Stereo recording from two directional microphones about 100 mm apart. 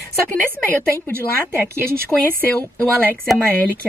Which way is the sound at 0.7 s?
20° left (ahead or behind).